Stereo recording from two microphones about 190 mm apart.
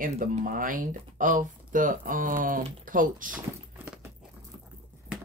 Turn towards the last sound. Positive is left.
turn(degrees=-45)  # may be behind; listen again after turning